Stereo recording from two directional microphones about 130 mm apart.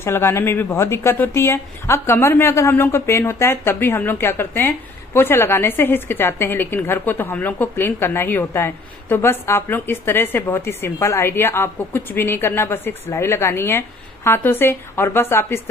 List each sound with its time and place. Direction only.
0.0 s speech: 20° left (ahead or behind)